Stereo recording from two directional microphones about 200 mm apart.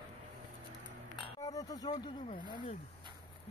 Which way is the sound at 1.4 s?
20° left (ahead or behind).